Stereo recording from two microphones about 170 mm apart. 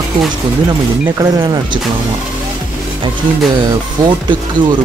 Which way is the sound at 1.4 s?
25° right (ahead or behind).